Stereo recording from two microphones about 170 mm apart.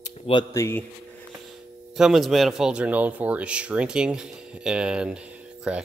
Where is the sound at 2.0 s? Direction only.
Centre (ahead or behind).